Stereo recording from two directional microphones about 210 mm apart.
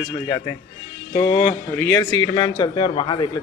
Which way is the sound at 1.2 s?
10° left (ahead or behind).